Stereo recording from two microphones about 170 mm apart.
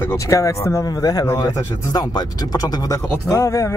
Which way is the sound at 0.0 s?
15° left (ahead or behind).